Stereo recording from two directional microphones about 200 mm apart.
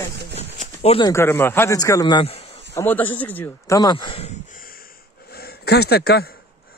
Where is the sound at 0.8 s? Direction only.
30° left (ahead or behind).